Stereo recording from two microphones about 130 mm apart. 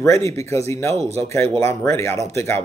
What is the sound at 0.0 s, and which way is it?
Speech, 20° left (ahead or behind).